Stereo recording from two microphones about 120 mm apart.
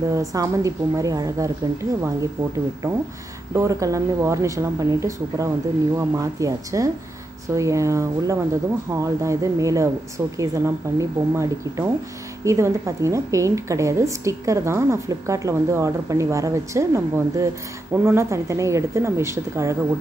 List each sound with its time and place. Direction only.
0.1 s a woman's voice: 30° right (ahead or behind)
3.5 s a woman's voice: 25° right (ahead or behind)